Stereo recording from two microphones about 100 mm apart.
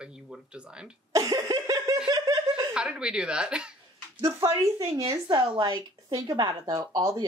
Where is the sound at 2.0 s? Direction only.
40° right (ahead or behind).